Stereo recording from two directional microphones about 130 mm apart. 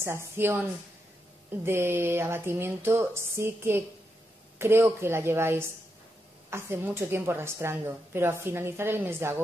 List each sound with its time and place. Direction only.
0.0 s a woman's voice: 20° right (ahead or behind)